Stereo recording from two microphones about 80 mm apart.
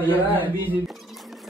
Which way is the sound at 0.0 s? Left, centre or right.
Left.